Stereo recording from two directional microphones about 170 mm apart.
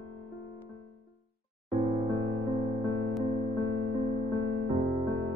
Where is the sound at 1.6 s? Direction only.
30° right (ahead or behind).